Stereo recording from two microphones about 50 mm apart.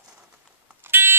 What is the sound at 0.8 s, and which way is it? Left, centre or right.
Buzzer, right.